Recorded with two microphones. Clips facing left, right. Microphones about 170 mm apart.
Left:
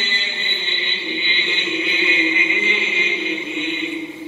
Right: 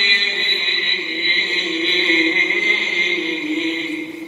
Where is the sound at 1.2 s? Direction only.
40° right (ahead or behind).